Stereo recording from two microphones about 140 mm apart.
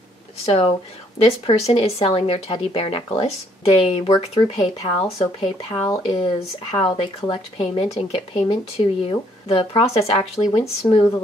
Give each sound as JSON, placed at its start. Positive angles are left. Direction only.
{"t": 0.5, "sound": "speech", "side_deg": 45}